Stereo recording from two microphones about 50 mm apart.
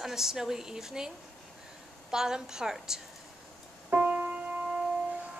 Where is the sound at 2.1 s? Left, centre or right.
Centre.